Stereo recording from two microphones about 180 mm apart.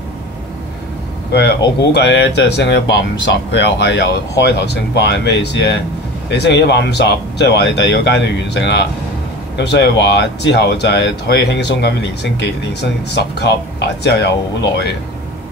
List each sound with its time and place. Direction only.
1.8 s speech: 70° left (ahead or behind)